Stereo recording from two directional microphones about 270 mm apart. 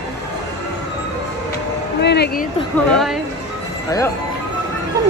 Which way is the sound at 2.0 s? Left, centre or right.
Left.